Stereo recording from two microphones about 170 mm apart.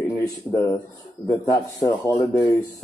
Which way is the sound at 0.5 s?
20° left (ahead or behind).